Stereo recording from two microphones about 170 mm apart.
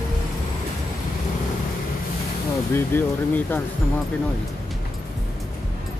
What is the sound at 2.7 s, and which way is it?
Speech, 10° left (ahead or behind).